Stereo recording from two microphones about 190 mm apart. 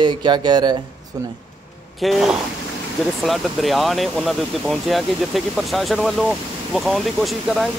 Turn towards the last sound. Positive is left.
turn(degrees=0)  # may be behind; listen again after turning